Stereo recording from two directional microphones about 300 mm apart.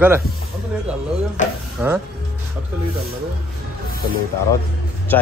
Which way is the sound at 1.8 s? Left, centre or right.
Centre.